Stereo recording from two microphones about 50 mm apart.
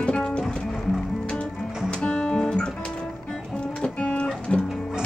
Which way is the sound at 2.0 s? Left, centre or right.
Centre.